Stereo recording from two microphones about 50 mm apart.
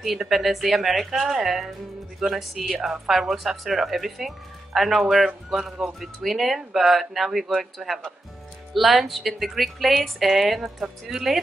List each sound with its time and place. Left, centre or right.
0.0 s speech: centre